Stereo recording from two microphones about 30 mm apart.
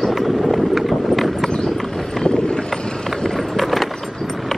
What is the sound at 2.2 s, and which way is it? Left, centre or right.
Clip-clop, left.